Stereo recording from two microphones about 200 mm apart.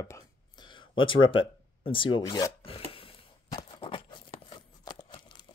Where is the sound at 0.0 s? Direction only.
20° left (ahead or behind).